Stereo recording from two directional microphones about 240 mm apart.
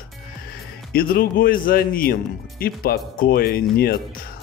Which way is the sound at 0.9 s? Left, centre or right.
Left.